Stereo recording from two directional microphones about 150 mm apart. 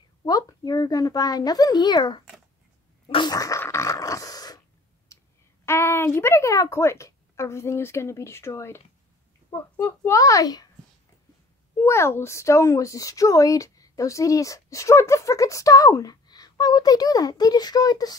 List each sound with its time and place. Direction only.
0.2 s speech: 25° left (ahead or behind)
3.1 s dog: 30° left (ahead or behind)
5.1 s a sound: 20° left (ahead or behind)
5.7 s speech: 15° left (ahead or behind)
11.8 s speech: 15° left (ahead or behind)